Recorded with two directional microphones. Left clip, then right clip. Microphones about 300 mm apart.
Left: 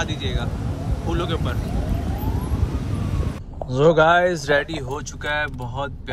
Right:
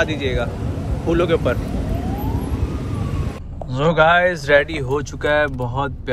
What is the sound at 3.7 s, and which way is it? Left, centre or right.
Speech, centre.